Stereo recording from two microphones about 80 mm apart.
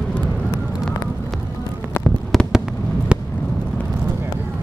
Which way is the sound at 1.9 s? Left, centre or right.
Left.